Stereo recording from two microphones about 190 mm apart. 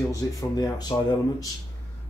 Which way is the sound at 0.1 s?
20° left (ahead or behind).